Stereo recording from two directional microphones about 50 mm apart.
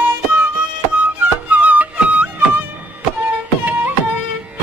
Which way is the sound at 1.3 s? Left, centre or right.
Right.